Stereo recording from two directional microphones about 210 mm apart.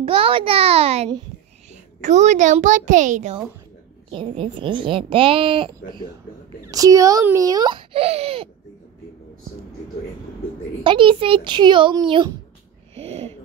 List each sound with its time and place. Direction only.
0.0 s a child's voice: 25° right (ahead or behind)
4.1 s a child's voice: 25° right (ahead or behind)
10.8 s speech: 25° right (ahead or behind)
12.9 s a sound: 30° right (ahead or behind)